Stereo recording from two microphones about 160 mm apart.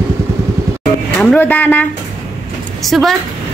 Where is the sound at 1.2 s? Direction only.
10° left (ahead or behind).